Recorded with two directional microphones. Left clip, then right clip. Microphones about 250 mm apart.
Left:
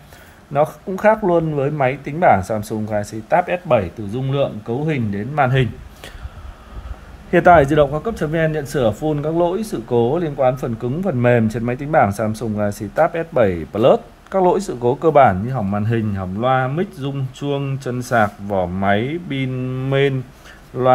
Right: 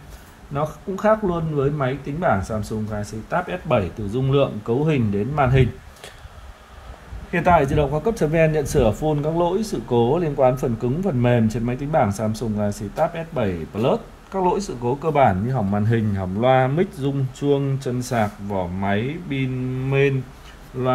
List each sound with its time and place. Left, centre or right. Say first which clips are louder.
0.5 s speech: left 8 dB; centre
7.2 s speech: left 6 dB; centre